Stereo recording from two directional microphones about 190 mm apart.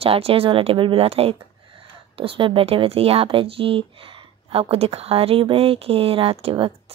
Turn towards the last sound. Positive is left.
turn(degrees=-30)  # may be behind; listen again after turning